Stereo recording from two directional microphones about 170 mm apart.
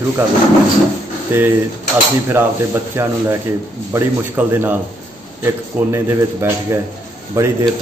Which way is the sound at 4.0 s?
15° right (ahead or behind).